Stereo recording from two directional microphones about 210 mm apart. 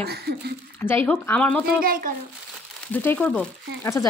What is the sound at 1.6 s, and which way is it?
Speech, 45° right (ahead or behind).